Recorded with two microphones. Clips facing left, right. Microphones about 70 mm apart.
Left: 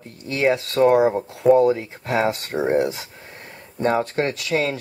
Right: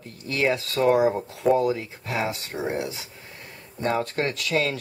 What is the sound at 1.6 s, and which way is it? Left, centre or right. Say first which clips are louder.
Speech: left 6 dB; left.